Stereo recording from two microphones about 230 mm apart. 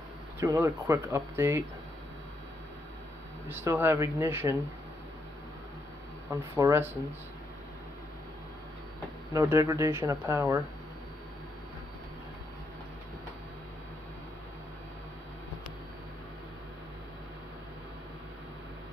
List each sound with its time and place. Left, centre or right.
0.4 s speech: centre
3.4 s speech: centre
6.3 s speech: centre
9.3 s speech: centre